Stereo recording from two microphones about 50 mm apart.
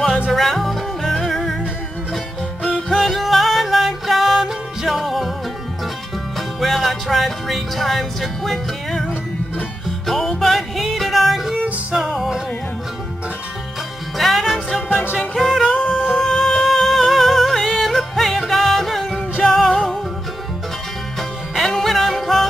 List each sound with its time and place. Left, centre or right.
0.3 s music: centre
2.9 s music: centre
6.6 s music: centre
14.1 s music: centre
15.6 s music: centre
16.2 s music: centre
21.2 s music: centre